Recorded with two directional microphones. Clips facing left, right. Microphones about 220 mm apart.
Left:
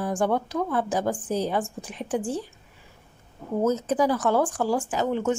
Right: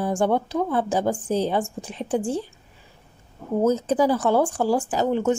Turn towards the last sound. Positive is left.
turn(degrees=-35)  # may be behind; listen again after turning